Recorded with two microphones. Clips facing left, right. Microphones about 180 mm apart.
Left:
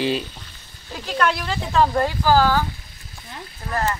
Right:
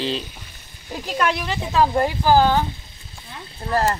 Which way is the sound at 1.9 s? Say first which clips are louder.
Right 1 dB; 20° right (ahead or behind).